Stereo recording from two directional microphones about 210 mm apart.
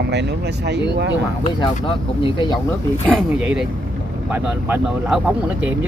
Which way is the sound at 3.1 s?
5° right (ahead or behind).